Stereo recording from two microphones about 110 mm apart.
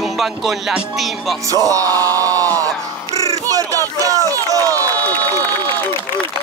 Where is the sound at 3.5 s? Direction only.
30° right (ahead or behind).